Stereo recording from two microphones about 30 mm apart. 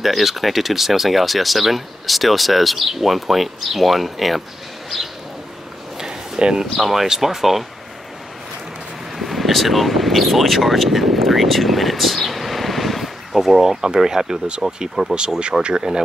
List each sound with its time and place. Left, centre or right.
0.0 s speech: centre
5.9 s a sound: centre
6.6 s speech: centre
9.2 s speech: centre; by 16.0 s right